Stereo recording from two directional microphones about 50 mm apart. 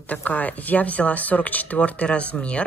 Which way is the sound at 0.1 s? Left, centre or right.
Left.